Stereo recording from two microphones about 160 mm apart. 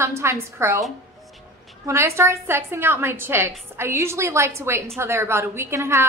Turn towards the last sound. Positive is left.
turn(degrees=-15)  # may be behind; listen again after turning